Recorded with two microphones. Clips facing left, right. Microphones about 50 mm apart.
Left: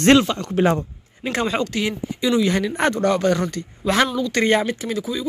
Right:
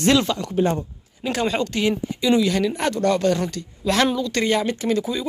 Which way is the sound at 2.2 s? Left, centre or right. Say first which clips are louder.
Even; left.